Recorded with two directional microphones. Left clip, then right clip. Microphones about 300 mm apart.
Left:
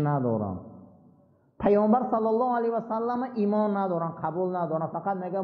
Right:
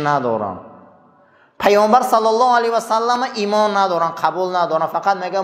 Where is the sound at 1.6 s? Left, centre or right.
Centre.